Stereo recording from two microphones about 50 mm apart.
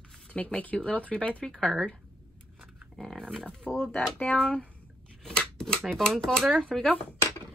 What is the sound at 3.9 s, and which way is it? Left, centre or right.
Speech, left.